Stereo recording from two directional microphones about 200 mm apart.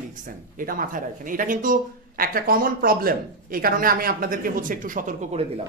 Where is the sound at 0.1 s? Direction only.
40° right (ahead or behind).